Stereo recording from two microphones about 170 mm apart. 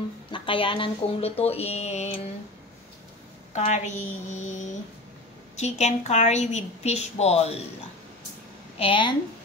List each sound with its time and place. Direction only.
0.3 s a woman's voice: 30° left (ahead or behind)
3.5 s a woman's voice: 45° left (ahead or behind)
8.7 s a woman's voice: 30° left (ahead or behind)